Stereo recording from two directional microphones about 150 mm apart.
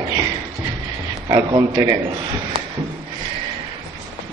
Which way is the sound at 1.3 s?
25° right (ahead or behind).